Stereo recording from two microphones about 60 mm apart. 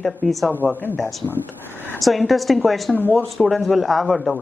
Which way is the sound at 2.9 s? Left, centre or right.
Left.